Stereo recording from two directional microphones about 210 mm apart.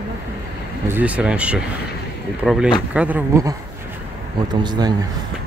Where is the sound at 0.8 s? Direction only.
10° right (ahead or behind).